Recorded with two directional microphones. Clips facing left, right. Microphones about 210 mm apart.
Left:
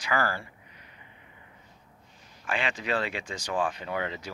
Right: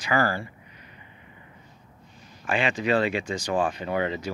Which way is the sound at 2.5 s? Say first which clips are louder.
Right 6 dB; 10° right (ahead or behind).